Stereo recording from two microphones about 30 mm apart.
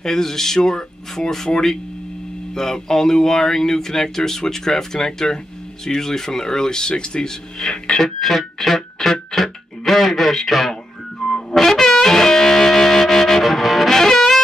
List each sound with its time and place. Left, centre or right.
0.0 s speech: centre
7.2 s speech: centre
8.0 s music: centre
8.5 s speech: centre
11.3 s music: centre
13.4 s music: centre
13.8 s music: centre